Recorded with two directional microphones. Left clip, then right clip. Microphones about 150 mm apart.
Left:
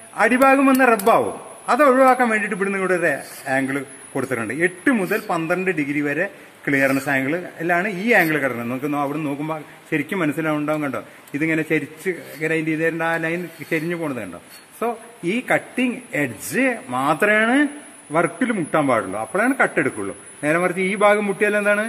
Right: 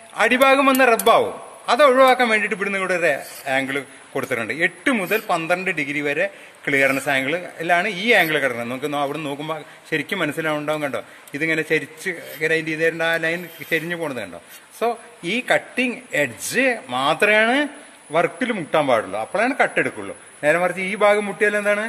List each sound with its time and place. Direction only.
0.2 s a man's voice: 65° right (ahead or behind)
1.7 s a man's voice: 60° right (ahead or behind); by 14.3 s 90° right
14.8 s a man's voice: 75° right (ahead or behind)
20.4 s a man's voice: 65° right (ahead or behind)